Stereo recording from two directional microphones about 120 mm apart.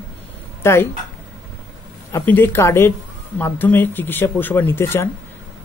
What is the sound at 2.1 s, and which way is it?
Speech, 15° left (ahead or behind).